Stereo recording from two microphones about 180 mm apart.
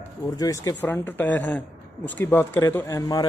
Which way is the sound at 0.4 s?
20° left (ahead or behind).